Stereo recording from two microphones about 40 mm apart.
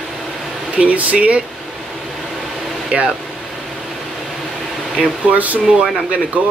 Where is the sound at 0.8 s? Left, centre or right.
Right.